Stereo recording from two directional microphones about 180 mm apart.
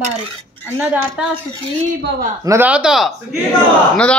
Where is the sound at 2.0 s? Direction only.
65° right (ahead or behind).